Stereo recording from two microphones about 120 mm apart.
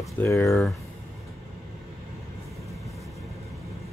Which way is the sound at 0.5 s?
Centre (ahead or behind).